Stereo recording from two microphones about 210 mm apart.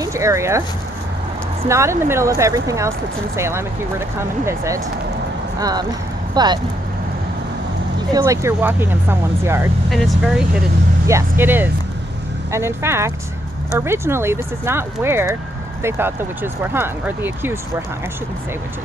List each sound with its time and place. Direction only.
0.0 s speech: 15° right (ahead or behind)
1.7 s speech: 15° right (ahead or behind)
8.1 s speech: 15° right (ahead or behind)
9.8 s speech: centre (ahead or behind)